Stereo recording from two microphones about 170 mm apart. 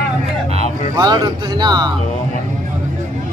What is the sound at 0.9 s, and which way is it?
Speech, 25° right (ahead or behind).